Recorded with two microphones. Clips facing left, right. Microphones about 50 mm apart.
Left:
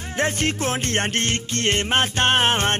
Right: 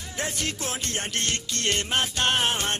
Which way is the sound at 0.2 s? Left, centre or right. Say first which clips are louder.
Left 8 dB; left.